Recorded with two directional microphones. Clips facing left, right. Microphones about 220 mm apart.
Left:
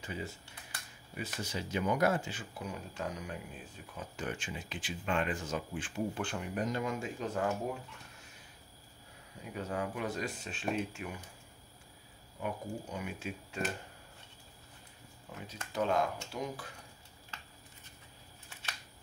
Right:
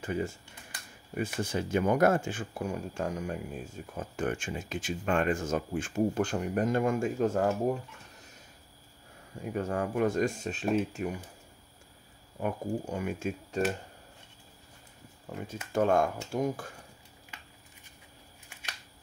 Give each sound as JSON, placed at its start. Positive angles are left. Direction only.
{"t": 0.0, "sound": "speech", "side_deg": -50}
{"t": 9.4, "sound": "speech", "side_deg": -50}
{"t": 12.4, "sound": "speech", "side_deg": -50}
{"t": 15.7, "sound": "speech", "side_deg": -50}